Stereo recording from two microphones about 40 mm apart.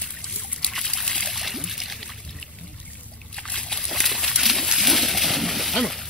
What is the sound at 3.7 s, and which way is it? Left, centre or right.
Splash, centre.